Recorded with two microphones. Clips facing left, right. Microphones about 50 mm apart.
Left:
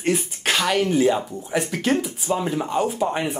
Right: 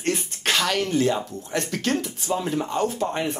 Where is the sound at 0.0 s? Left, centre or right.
Centre.